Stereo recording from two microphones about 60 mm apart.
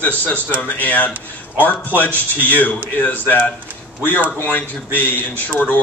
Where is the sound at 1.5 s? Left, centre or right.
Right.